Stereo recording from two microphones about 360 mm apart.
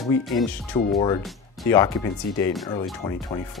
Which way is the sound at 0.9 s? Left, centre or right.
Centre.